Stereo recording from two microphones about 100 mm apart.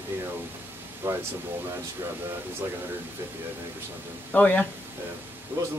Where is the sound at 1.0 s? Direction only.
25° right (ahead or behind).